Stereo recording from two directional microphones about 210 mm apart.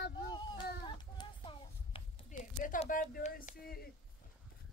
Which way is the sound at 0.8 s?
25° left (ahead or behind).